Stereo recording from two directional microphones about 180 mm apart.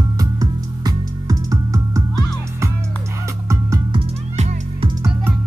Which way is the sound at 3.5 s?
15° right (ahead or behind).